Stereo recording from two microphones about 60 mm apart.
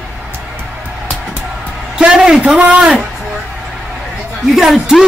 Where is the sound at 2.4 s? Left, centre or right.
Right.